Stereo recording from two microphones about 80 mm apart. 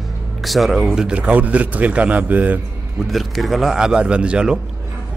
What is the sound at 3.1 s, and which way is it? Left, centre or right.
A man's voice, centre.